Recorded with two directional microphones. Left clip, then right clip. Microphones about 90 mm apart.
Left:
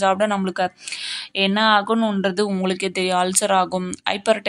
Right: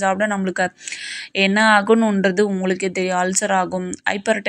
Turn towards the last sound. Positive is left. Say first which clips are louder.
# even
turn(degrees=5)  # may be behind; listen again after turning